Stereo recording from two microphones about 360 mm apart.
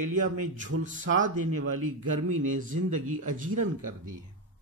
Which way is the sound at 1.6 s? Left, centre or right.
Right.